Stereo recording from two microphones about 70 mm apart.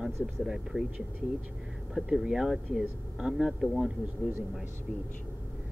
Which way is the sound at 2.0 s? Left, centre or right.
Centre.